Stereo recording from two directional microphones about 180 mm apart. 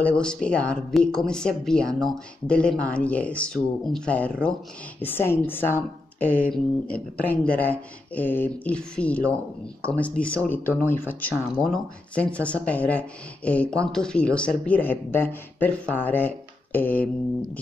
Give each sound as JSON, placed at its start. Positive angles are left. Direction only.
{"t": 0.0, "sound": "speech", "side_deg": 5}